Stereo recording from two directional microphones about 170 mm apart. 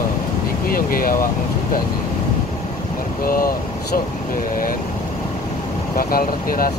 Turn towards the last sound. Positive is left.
turn(degrees=60)  # may be behind; listen again after turning